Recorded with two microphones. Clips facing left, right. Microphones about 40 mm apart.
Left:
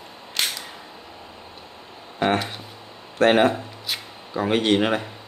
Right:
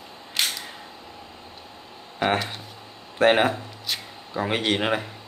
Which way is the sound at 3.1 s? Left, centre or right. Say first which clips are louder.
Left 2 dB; centre.